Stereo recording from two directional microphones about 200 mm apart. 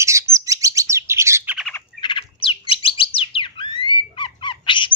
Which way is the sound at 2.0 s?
25° left (ahead or behind).